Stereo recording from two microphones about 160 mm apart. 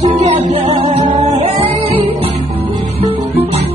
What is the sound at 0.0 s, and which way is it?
Music, 45° right (ahead or behind).